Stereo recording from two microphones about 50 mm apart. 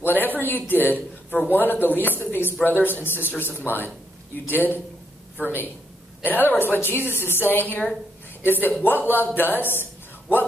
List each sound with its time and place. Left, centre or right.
0.1 s a man's voice: left